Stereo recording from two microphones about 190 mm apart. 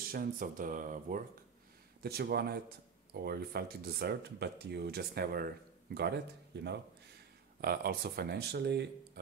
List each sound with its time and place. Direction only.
0.1 s speech: 50° right (ahead or behind)